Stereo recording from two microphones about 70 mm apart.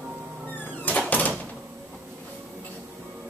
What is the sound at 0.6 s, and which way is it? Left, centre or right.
Door, left.